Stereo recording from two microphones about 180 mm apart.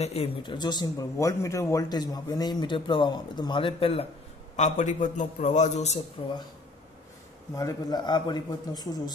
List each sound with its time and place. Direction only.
0.0 s a man's voice: 35° left (ahead or behind)
6.2 s speech: 30° left (ahead or behind)
7.5 s speech: 20° left (ahead or behind)